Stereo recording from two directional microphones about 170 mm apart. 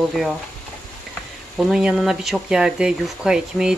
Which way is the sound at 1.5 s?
5° right (ahead or behind).